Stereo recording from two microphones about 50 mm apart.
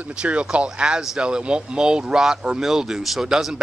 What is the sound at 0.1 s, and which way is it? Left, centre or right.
A man's voice, centre.